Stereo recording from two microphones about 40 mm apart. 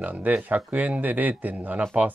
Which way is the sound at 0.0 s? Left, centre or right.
Right.